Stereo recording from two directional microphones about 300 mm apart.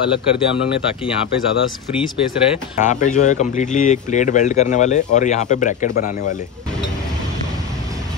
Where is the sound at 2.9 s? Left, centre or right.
Left.